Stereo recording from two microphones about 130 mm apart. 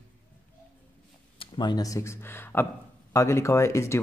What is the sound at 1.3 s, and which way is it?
Speech, 35° left (ahead or behind).